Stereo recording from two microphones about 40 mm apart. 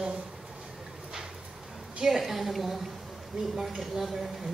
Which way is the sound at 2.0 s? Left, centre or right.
Centre.